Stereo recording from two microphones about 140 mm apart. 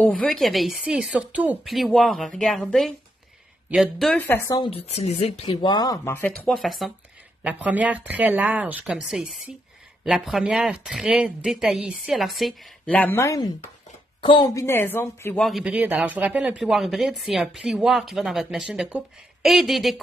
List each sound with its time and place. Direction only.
0.0 s speech: 5° left (ahead or behind); by 1.7 s 10° right (ahead or behind)
1.7 s speech: centre (ahead or behind)
4.3 s speech: 25° left (ahead or behind)
4.6 s speech: 45° left (ahead or behind)
5.7 s speech: 30° left (ahead or behind)
6.0 s speech: 15° left (ahead or behind)
6.5 s speech: centre (ahead or behind)
7.4 s speech: 10° right (ahead or behind)
12.9 s speech: 15° left (ahead or behind)
14.2 s a woman's voice: 35° left (ahead or behind)
14.5 s speech: 20° left (ahead or behind)
15.3 s speech: centre (ahead or behind)
15.6 s speech: 10° right (ahead or behind)